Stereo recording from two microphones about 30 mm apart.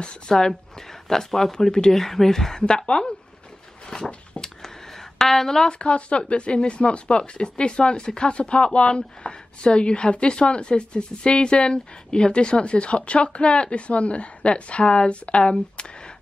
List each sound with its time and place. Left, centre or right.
0.3 s speech: centre
2.0 s speech: centre
2.9 s speech: left
3.9 s a sound: left
5.2 s speech: centre
5.7 s a woman's voice: left